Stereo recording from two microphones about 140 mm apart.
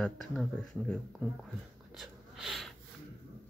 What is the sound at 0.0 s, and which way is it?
Speech, 5° left (ahead or behind).